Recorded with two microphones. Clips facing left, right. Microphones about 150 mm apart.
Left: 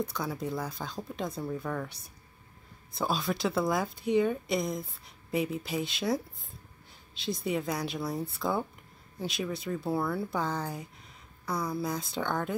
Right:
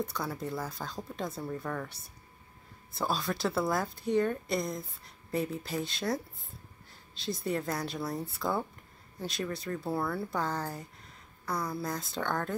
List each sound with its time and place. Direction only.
0.0 s speech: centre (ahead or behind)